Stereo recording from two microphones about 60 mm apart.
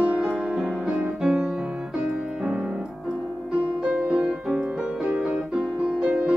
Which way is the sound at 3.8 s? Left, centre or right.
Right.